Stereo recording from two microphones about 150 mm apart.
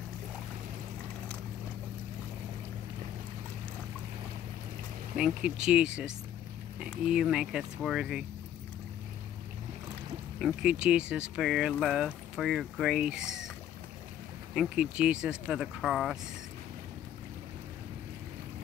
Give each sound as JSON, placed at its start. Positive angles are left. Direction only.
{"t": 5.1, "sound": "speech", "side_deg": -5}
{"t": 10.4, "sound": "speech", "side_deg": -5}
{"t": 14.5, "sound": "speech", "side_deg": -5}